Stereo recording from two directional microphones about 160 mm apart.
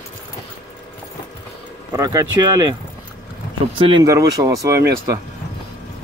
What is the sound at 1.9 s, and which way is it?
Speech, 20° right (ahead or behind).